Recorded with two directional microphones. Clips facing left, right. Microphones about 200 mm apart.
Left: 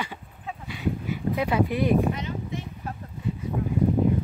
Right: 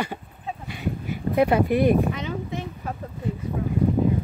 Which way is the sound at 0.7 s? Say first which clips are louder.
Left 2 dB; 55° right (ahead or behind).